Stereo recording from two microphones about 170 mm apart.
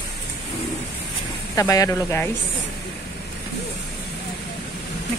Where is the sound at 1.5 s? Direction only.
20° left (ahead or behind).